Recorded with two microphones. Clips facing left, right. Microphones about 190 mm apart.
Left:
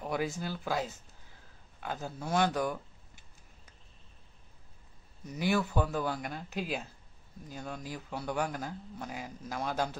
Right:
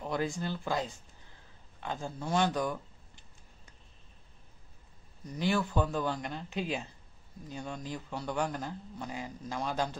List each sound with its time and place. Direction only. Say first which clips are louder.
0.0 s speech: right 1 dB; 5° left (ahead or behind)
1.8 s a sound: right 1 dB; 5° left (ahead or behind)
5.2 s speech: even; 5° left (ahead or behind)